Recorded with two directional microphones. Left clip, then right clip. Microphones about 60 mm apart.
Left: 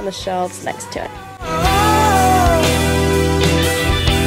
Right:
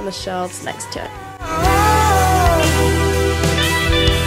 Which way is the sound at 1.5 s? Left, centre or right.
Centre.